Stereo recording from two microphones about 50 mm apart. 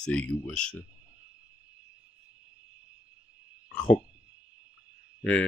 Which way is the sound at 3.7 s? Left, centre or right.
Left.